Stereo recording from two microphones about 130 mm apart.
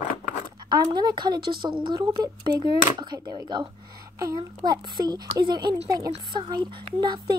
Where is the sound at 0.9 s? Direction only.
35° right (ahead or behind).